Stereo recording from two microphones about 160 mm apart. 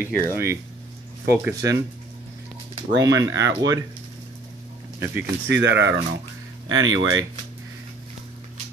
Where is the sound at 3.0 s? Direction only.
20° right (ahead or behind).